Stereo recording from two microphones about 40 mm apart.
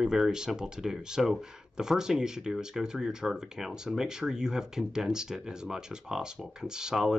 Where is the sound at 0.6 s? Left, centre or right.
Centre.